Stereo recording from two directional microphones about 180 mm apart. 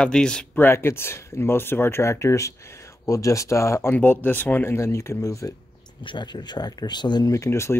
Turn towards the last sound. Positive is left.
turn(degrees=15)  # may be behind; listen again after turning